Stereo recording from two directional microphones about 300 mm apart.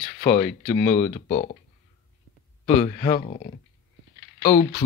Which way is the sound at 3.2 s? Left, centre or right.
Left.